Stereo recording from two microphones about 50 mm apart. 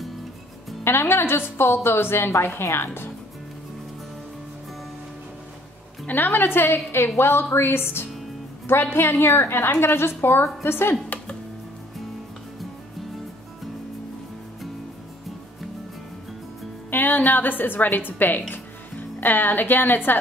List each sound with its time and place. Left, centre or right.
0.8 s a woman's voice: left
6.0 s a woman's voice: left
16.9 s a woman's voice: left